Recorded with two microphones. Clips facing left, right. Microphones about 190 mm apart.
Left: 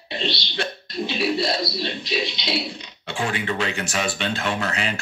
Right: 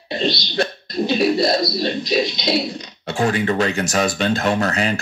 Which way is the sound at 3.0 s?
40° right (ahead or behind).